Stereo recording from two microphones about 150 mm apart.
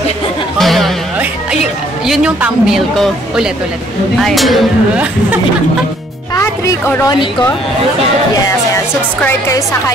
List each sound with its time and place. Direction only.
0.6 s music: centre (ahead or behind)
2.0 s a woman's voice: 5° right (ahead or behind)
6.3 s a woman's voice: 20° left (ahead or behind)